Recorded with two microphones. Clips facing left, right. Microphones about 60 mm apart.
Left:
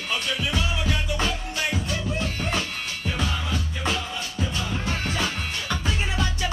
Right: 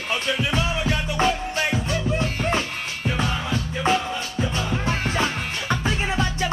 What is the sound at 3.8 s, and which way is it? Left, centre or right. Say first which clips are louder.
Music: right 7 dB; right.